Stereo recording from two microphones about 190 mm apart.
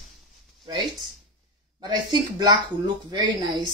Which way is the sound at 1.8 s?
20° right (ahead or behind).